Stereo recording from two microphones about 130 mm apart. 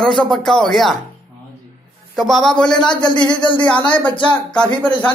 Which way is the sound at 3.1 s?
35° left (ahead or behind).